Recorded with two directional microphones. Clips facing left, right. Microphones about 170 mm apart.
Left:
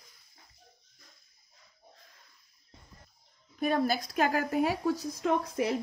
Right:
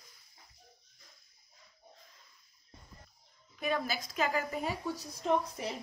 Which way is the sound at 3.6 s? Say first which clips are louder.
Left 6 dB; 50° left (ahead or behind).